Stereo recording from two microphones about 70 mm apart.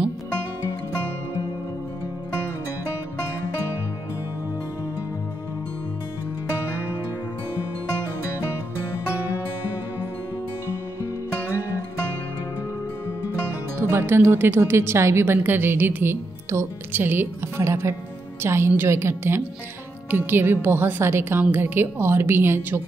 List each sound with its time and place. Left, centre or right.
13.7 s speech: right